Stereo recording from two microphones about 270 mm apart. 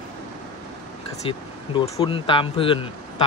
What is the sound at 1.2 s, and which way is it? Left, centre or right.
Speech, centre.